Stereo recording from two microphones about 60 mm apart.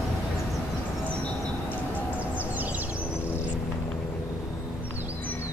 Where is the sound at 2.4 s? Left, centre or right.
Right.